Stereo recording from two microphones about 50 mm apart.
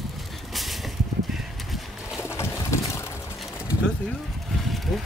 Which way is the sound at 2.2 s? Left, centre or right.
Left.